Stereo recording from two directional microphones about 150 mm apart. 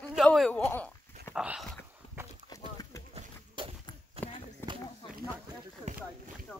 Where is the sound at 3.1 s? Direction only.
35° right (ahead or behind).